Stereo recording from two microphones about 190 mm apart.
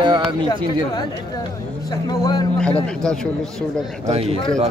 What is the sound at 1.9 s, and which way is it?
Speech, 20° left (ahead or behind).